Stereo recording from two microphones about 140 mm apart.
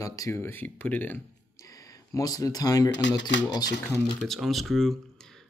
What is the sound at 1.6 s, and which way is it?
Speech, 25° left (ahead or behind).